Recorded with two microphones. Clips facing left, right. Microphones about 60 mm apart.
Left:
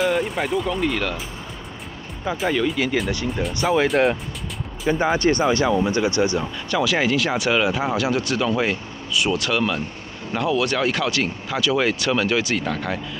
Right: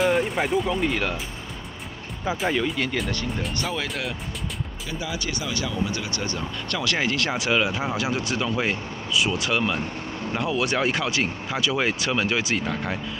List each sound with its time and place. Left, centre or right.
0.0 s speech: centre
2.2 s speech: centre
3.1 s speech: centre
4.8 s speech: left
6.7 s speech: centre